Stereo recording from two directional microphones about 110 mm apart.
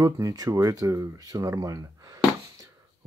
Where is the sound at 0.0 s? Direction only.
35° right (ahead or behind).